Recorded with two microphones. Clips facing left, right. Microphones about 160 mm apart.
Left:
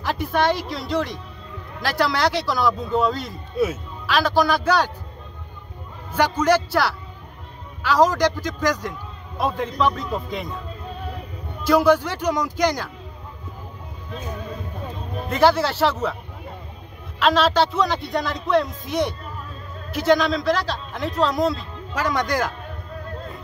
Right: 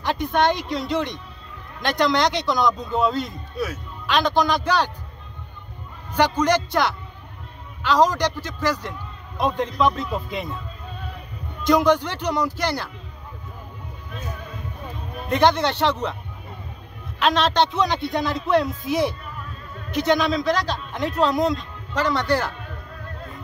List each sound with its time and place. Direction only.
0.0 s a man's voice: 5° left (ahead or behind)
3.5 s speech: 25° left (ahead or behind)
4.0 s a man's voice: 5° left (ahead or behind)
6.1 s a man's voice: 10° left (ahead or behind)
11.6 s a man's voice: 5° left (ahead or behind)
15.2 s a man's voice: 5° left (ahead or behind)
17.2 s a man's voice: centre (ahead or behind)